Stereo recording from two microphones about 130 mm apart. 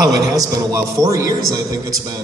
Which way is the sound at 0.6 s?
30° right (ahead or behind).